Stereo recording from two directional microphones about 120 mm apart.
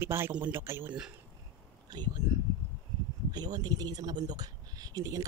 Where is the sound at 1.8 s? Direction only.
35° right (ahead or behind).